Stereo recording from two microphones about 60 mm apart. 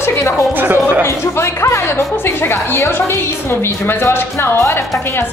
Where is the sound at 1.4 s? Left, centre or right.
Left.